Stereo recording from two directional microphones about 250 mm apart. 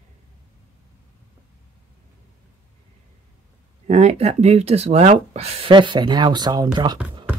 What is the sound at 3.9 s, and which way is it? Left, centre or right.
Speech, right.